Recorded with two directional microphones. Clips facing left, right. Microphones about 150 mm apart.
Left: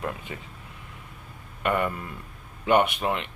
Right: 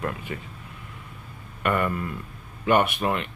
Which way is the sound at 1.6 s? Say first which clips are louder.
Right 1 dB; 20° left (ahead or behind).